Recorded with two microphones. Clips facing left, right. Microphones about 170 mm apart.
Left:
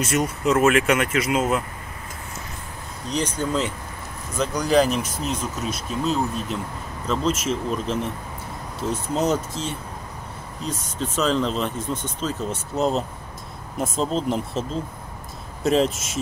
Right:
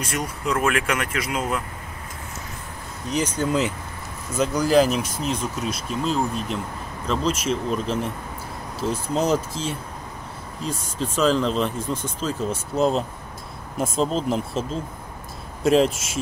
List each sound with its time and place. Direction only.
0.0 s speech: 5° left (ahead or behind)
3.1 s speech: 10° right (ahead or behind)